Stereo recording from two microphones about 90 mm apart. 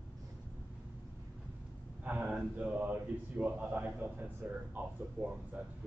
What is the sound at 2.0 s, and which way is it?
A man's voice, 10° right (ahead or behind).